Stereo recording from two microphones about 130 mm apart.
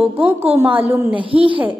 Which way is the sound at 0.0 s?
15° right (ahead or behind).